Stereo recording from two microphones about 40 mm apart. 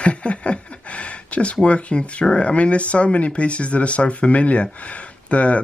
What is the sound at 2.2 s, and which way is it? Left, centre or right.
Speech, left.